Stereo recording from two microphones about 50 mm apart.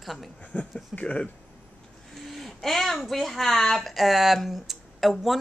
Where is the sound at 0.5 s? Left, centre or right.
Left.